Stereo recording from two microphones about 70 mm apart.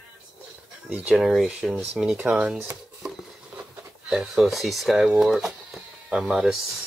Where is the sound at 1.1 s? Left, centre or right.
Centre.